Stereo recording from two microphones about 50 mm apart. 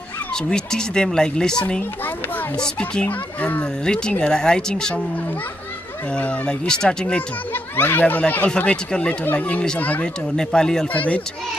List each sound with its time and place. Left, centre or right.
0.3 s speech: centre; by 3.6 s left
3.8 s speech: centre
6.1 s speech: left
7.2 s speech: left
8.5 s speech: left
10.3 s speech: centre
10.9 s speech: left